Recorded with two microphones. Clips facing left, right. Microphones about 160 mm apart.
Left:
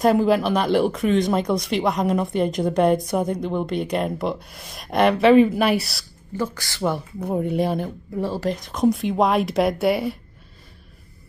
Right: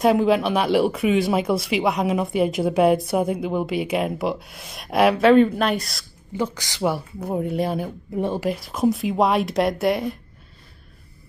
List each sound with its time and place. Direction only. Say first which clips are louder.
0.0 s speech: even; centre (ahead or behind)
6.3 s speech: right 1 dB; 20° right (ahead or behind); by 7.9 s centre (ahead or behind)
8.2 s speech: right 2 dB; 20° right (ahead or behind)
8.5 s speech: left 3 dB; 5° right (ahead or behind)